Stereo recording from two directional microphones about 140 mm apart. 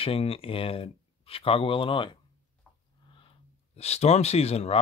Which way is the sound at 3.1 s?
40° left (ahead or behind).